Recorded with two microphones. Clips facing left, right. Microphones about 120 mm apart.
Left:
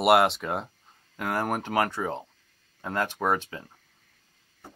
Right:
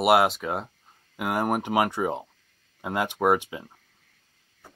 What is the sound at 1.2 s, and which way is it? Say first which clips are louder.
Speech: right 3 dB; 15° right (ahead or behind).